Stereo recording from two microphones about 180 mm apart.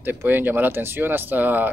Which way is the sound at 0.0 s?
10° right (ahead or behind).